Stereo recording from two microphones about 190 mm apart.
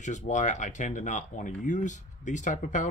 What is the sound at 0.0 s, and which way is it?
Speech, 40° left (ahead or behind).